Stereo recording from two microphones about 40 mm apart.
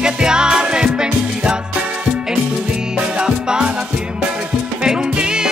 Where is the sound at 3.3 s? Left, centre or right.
Right.